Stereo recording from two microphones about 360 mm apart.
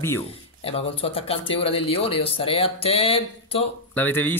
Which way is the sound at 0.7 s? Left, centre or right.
Centre.